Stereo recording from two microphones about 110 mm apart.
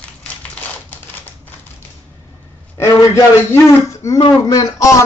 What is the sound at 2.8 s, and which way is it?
A man's voice, 30° left (ahead or behind).